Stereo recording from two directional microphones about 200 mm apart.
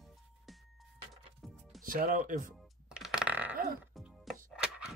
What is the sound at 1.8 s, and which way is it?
Speech, 45° right (ahead or behind).